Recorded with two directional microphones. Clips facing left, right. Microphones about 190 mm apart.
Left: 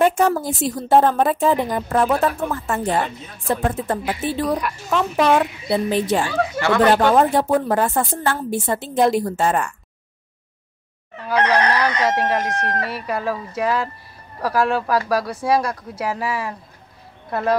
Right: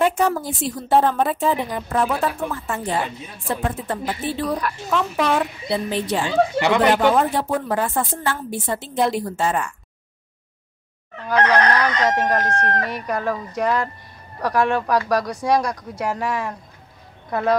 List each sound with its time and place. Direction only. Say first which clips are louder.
0.0 s a woman's voice: left 2 dB; 45° left (ahead or behind)
6.2 s a woman's voice: right 2 dB; 20° right (ahead or behind)
7.2 s a woman's voice: left 4 dB; 40° left (ahead or behind)
11.2 s fowl: even; 5° left (ahead or behind)
12.6 s speech: right 1 dB; 5° left (ahead or behind)